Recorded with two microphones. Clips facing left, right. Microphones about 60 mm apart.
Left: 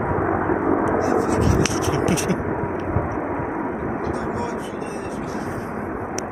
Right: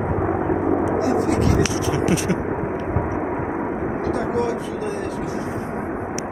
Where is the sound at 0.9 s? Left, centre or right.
Centre.